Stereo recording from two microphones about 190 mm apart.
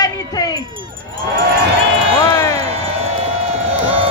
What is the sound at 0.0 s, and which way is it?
Wind chime, 20° left (ahead or behind).